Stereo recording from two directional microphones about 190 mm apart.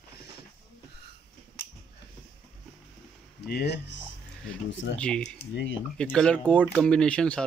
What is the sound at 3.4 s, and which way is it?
Speech, 60° left (ahead or behind).